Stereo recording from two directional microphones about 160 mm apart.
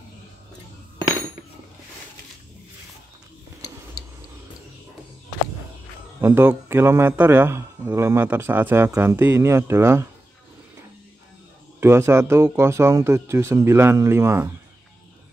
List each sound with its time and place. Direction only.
4.0 s a sound: 20° left (ahead or behind)
6.2 s a man's voice: 15° right (ahead or behind)
11.8 s a man's voice: 15° right (ahead or behind)